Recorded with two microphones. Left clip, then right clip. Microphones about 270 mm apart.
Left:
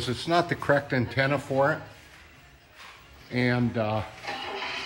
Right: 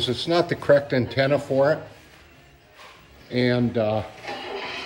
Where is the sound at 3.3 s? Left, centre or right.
Centre.